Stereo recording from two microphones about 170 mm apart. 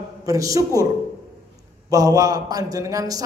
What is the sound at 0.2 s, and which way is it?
Speech, 20° right (ahead or behind).